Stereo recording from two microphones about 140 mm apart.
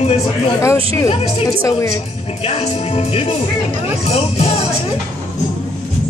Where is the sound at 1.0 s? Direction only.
45° left (ahead or behind).